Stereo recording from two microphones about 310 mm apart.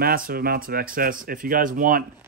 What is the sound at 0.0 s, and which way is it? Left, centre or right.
Speech, right.